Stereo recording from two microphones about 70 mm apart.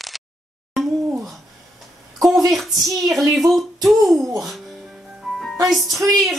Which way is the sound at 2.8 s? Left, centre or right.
Right.